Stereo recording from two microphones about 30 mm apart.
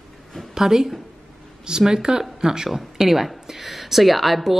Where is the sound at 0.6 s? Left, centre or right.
Centre.